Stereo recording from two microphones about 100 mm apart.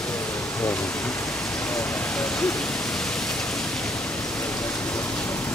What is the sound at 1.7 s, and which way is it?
Speech, 10° left (ahead or behind).